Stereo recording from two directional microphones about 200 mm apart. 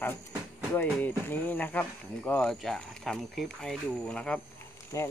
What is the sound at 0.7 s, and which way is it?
Speech, 10° left (ahead or behind).